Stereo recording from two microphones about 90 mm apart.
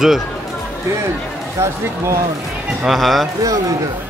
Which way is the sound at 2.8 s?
Centre (ahead or behind).